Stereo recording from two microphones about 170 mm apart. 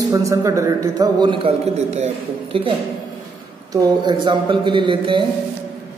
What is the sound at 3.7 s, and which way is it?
Speech, 25° right (ahead or behind).